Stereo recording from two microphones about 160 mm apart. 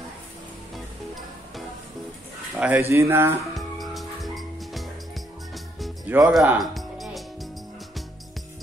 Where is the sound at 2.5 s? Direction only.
10° right (ahead or behind).